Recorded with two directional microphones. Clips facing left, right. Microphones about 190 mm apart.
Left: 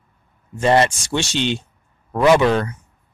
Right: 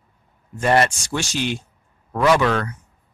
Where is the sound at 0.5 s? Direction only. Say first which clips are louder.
Left 2 dB; 20° left (ahead or behind).